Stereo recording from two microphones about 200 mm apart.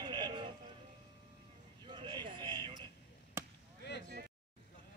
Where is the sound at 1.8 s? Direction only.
20° right (ahead or behind).